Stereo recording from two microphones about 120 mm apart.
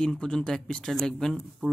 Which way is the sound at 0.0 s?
5° left (ahead or behind).